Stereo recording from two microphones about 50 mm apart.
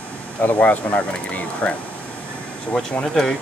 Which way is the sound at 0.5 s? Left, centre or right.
Left.